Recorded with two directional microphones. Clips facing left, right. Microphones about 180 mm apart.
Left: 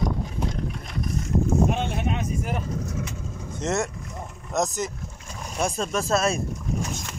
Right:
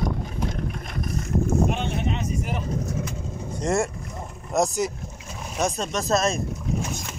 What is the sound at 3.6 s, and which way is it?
Speech, centre (ahead or behind).